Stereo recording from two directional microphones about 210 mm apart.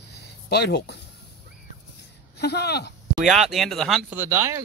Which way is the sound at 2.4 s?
50° left (ahead or behind).